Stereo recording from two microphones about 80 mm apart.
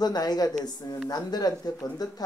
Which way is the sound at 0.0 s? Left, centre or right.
Left.